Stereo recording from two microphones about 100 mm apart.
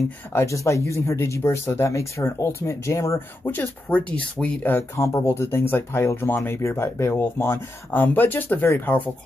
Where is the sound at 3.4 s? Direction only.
20° left (ahead or behind).